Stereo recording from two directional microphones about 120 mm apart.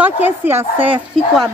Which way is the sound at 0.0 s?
15° right (ahead or behind).